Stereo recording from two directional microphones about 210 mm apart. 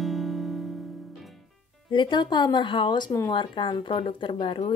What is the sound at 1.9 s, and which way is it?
A woman's voice, 20° left (ahead or behind).